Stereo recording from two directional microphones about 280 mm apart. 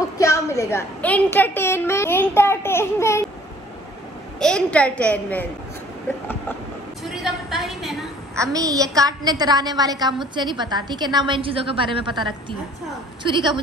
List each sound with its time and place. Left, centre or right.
0.2 s a woman's voice: centre
4.4 s a woman's voice: centre
7.2 s a sound: centre
8.4 s a woman's voice: centre